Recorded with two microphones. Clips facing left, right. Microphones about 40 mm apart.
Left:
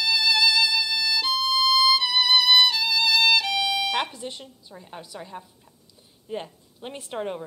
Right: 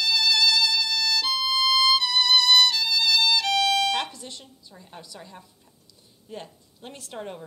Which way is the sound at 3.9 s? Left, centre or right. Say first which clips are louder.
Left 1 dB; left.